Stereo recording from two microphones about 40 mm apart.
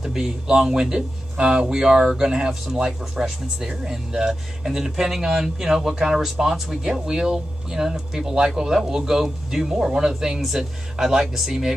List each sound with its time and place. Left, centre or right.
0.0 s a man's voice: centre
1.3 s speech: right; by 11.7 s centre